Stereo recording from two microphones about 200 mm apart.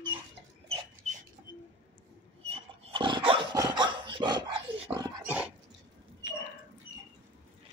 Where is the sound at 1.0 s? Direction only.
35° right (ahead or behind).